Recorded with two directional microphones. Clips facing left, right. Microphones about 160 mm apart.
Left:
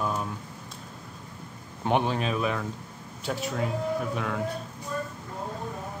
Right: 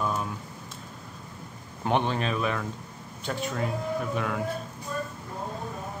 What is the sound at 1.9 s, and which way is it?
A man's voice, 5° left (ahead or behind).